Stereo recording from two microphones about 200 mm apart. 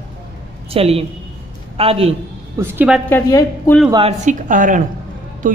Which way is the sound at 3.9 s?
30° right (ahead or behind).